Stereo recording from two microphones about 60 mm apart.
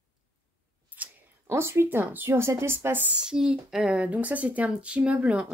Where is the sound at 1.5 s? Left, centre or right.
Right.